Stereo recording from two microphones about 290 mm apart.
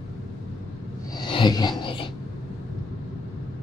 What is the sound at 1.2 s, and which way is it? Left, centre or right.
Filing, centre.